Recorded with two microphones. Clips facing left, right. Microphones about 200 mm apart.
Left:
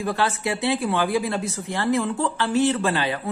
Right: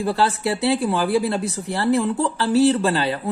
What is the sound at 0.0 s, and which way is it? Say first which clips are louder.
Speech: right 3 dB; 35° right (ahead or behind).